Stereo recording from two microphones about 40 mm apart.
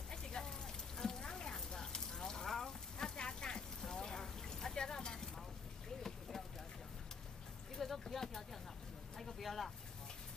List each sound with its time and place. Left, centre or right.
0.1 s rain: centre
7.7 s a sound: centre
9.2 s vehicle: centre